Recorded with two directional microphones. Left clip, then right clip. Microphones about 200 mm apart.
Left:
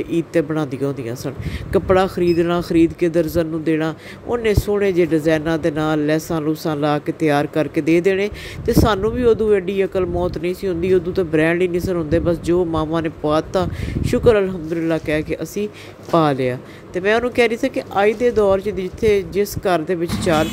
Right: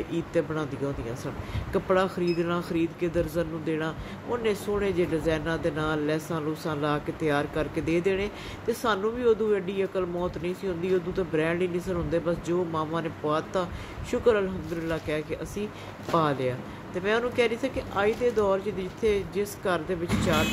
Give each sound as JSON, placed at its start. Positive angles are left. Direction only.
{"t": 0.1, "sound": "speech", "side_deg": 35}